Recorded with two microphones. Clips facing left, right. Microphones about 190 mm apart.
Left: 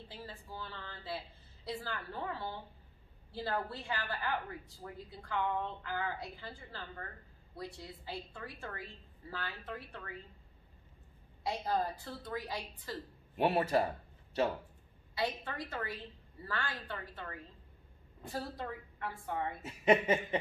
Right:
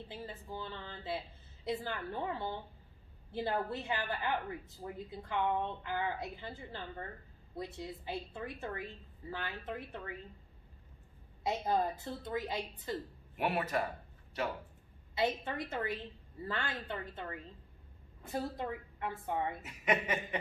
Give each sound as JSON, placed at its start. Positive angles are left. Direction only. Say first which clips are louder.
{"t": 0.1, "sound": "a sound", "louder": "right 3 dB", "side_deg": -20}
{"t": 3.3, "sound": "a woman's voice", "louder": "right 2 dB", "side_deg": -20}
{"t": 11.4, "sound": "a woman's voice", "louder": "right 2 dB", "side_deg": -20}
{"t": 13.4, "sound": "a woman's voice", "louder": "left 4 dB", "side_deg": 30}
{"t": 15.1, "sound": "a woman's voice", "louder": "right 3 dB", "side_deg": -20}
{"t": 19.6, "sound": "a woman's voice", "louder": "left 5 dB", "side_deg": 30}